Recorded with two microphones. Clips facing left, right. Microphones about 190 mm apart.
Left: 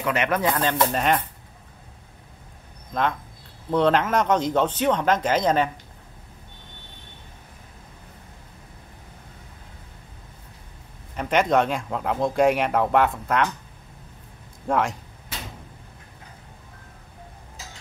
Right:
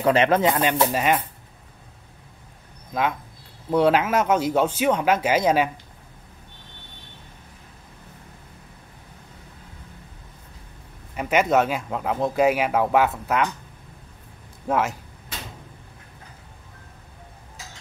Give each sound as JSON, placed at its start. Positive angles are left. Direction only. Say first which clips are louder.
{"t": 0.0, "sound": "speech", "louder": "right 5 dB", "side_deg": -30}
{"t": 0.6, "sound": "speech", "louder": "right 1 dB", "side_deg": -10}
{"t": 2.9, "sound": "speech", "louder": "even", "side_deg": -5}
{"t": 11.1, "sound": "speech", "louder": "right 1 dB", "side_deg": -5}
{"t": 14.7, "sound": "speech", "louder": "even", "side_deg": -5}